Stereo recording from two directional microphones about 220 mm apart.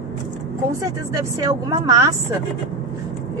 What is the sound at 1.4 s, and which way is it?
Speech, 15° right (ahead or behind).